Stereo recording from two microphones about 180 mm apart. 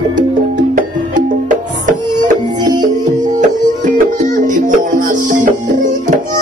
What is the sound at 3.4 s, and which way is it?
Music, 45° right (ahead or behind).